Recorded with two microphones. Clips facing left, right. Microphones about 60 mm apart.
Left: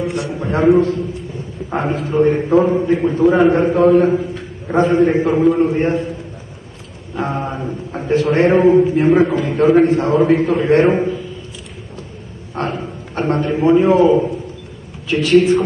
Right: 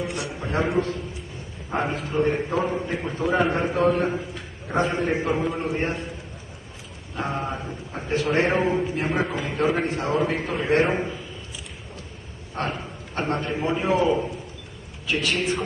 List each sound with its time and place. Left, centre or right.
0.0 s a sound: centre
0.4 s a man's voice: centre
2.7 s a man's voice: centre
7.2 s a man's voice: centre
12.6 s a man's voice: centre
15.0 s a man's voice: centre